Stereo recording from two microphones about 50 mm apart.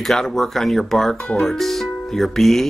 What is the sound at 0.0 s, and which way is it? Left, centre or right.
Speech, centre.